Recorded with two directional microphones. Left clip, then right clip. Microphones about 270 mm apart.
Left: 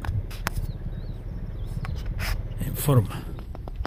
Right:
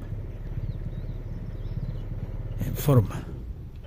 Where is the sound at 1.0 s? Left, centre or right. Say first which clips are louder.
Even; right.